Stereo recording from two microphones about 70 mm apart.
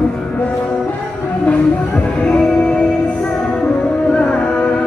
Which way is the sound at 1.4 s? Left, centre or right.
Centre.